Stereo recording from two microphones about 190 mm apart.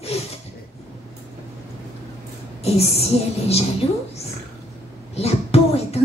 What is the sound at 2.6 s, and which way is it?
A woman's voice, 35° left (ahead or behind).